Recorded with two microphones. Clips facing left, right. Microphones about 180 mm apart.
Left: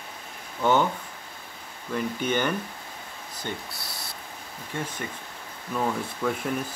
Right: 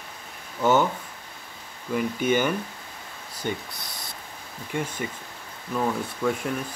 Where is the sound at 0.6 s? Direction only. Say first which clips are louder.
Right 2 dB; 5° right (ahead or behind).